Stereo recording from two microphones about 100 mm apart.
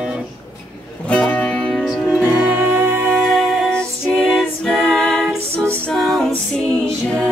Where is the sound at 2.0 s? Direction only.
15° right (ahead or behind).